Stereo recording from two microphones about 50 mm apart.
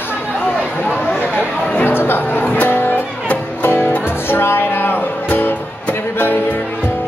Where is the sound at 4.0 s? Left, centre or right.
Left.